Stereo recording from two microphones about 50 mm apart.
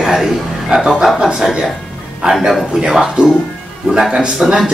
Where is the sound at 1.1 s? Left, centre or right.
Centre.